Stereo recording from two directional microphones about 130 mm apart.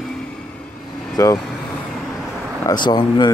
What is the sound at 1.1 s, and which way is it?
Speech, 30° left (ahead or behind).